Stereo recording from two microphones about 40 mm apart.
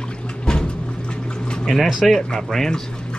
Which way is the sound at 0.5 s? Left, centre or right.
Centre.